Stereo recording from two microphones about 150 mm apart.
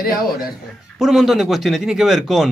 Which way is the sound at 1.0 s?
Centre (ahead or behind).